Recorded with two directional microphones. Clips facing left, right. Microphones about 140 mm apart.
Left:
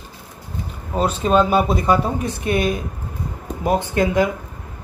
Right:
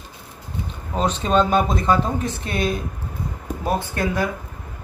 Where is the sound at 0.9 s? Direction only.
5° left (ahead or behind).